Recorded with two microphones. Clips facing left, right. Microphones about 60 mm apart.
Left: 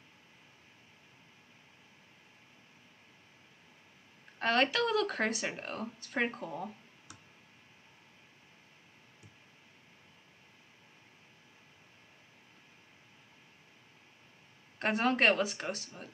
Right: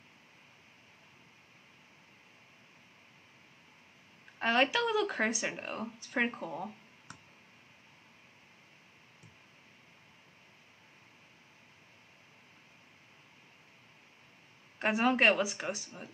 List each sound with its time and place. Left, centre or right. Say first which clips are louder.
4.4 s speech: even; centre
7.1 s clicking: right 3 dB; right
14.8 s speech: right 1 dB; centre